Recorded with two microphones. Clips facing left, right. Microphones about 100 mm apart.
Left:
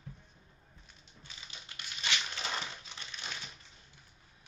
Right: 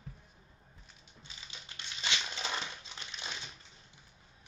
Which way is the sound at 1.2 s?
20° right (ahead or behind).